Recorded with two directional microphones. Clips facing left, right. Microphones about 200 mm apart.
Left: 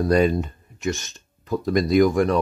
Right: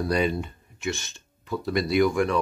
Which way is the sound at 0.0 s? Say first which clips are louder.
Left 6 dB; 45° left (ahead or behind).